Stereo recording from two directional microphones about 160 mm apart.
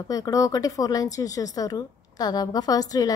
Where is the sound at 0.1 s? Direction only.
20° left (ahead or behind).